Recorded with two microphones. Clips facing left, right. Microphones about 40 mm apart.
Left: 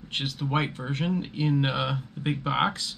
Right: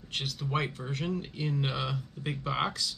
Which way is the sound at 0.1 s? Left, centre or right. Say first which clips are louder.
Left 4 dB; left.